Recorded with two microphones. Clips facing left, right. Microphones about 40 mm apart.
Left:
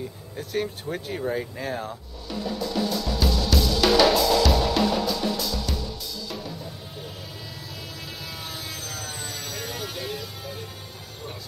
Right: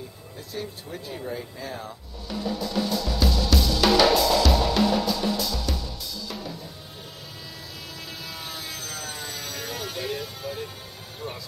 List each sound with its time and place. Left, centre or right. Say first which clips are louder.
0.4 s speech: left 7 dB; left
2.2 s music: even; centre
8.5 s vehicle: even; centre